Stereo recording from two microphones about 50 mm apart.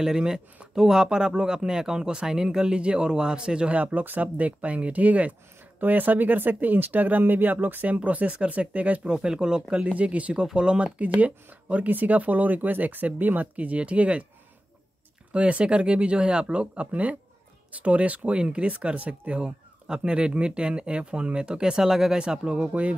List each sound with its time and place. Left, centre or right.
0.0 s speech: centre; by 9.1 s right
9.1 s speech: centre
11.0 s speech: right
15.3 s speech: right